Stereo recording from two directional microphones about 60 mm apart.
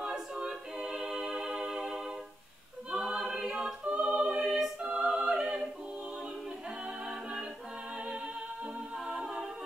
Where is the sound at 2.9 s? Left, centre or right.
Centre.